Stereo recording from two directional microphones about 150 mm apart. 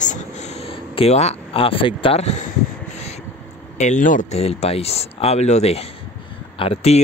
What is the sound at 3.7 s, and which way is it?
Speech, 55° left (ahead or behind).